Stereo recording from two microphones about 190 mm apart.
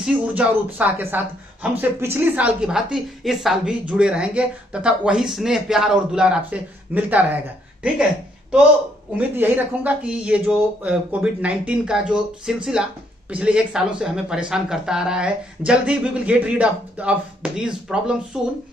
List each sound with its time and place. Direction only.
0.0 s speech: 5° right (ahead or behind)
9.1 s speech: 10° right (ahead or behind)